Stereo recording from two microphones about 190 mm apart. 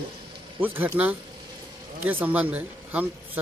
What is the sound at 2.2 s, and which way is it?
Speech, 10° right (ahead or behind).